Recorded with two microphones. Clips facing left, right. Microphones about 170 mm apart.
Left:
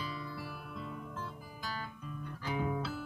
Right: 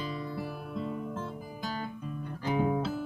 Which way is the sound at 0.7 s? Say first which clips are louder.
Right 10 dB; 30° right (ahead or behind).